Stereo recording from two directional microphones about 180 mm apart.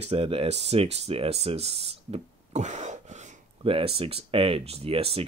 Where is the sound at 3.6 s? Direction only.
30° right (ahead or behind).